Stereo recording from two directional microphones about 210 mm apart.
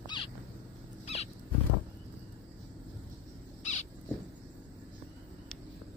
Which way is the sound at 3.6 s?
30° left (ahead or behind).